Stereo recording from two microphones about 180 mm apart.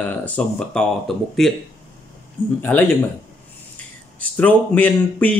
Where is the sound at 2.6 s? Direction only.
10° left (ahead or behind).